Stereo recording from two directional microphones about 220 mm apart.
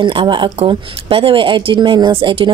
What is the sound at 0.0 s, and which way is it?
Speech, 20° right (ahead or behind).